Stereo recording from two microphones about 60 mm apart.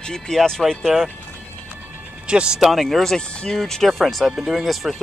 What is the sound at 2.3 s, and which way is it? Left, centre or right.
Speech, centre.